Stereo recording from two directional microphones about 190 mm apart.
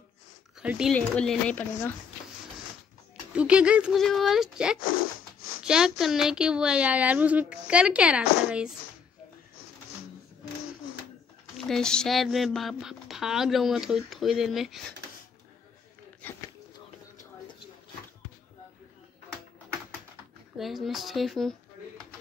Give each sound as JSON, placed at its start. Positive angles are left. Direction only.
{"t": 0.6, "sound": "a woman's voice", "side_deg": -5}
{"t": 3.3, "sound": "a woman's voice", "side_deg": -5}
{"t": 11.6, "sound": "a woman's voice", "side_deg": 5}
{"t": 16.2, "sound": "a sound", "side_deg": 10}
{"t": 20.5, "sound": "a woman's voice", "side_deg": 0}